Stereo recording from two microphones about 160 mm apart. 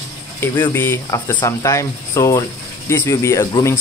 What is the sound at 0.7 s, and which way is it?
Speech, 15° left (ahead or behind).